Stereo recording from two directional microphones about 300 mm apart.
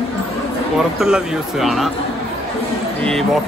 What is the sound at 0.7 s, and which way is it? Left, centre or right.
Speech, centre.